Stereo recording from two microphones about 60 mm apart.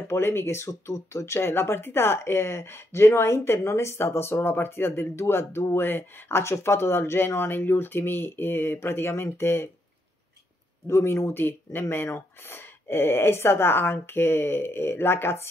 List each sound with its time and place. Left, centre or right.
0.1 s speech: left
10.9 s speech: left